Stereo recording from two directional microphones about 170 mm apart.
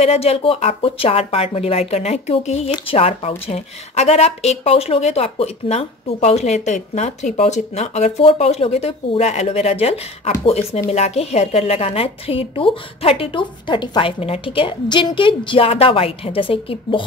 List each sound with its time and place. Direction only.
0.0 s a woman's voice: 35° left (ahead or behind)